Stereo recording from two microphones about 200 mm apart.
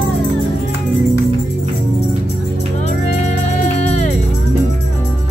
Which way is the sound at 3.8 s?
35° left (ahead or behind).